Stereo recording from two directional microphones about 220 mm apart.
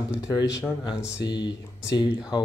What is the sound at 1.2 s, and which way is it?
Speech, 20° left (ahead or behind).